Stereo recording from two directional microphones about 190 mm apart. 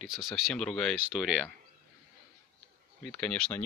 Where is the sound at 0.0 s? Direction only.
Centre (ahead or behind).